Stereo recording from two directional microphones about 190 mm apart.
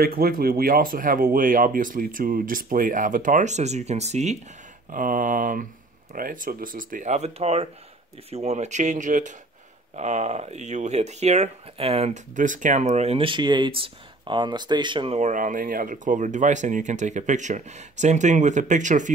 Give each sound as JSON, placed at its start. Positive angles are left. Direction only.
{"t": 0.0, "sound": "speech", "side_deg": -50}
{"t": 15.1, "sound": "speech", "side_deg": -40}